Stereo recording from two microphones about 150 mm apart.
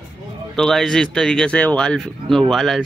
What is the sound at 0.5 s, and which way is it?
Speech, 5° left (ahead or behind).